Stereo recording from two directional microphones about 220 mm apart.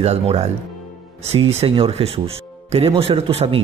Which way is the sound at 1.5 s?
25° right (ahead or behind).